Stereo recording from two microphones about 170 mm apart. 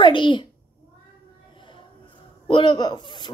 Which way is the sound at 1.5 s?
30° left (ahead or behind).